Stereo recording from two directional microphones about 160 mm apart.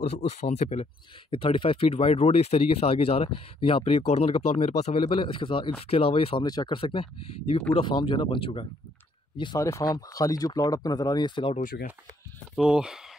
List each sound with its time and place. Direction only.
0.4 s speech: 45° left (ahead or behind); by 11.5 s 30° left (ahead or behind)
11.6 s speech: 65° left (ahead or behind)
12.5 s speech: 5° right (ahead or behind)